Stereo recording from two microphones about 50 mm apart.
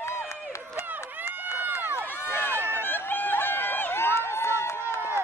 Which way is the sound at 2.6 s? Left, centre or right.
Left.